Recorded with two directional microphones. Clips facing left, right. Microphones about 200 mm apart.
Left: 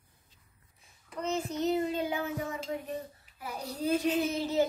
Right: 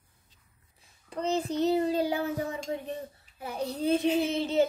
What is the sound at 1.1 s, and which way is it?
A child's voice, 30° right (ahead or behind).